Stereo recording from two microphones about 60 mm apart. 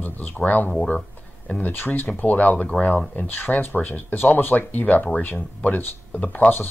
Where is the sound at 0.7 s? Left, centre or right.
Centre.